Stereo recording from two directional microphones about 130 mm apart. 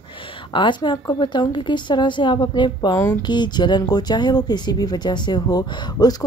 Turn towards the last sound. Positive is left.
turn(degrees=30)  # may be behind; listen again after turning